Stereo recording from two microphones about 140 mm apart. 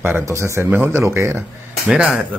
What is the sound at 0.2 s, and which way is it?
Speech, 20° right (ahead or behind).